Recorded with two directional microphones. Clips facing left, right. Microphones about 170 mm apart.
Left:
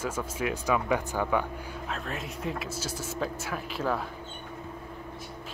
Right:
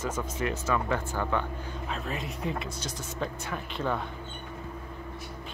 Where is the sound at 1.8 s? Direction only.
Centre (ahead or behind).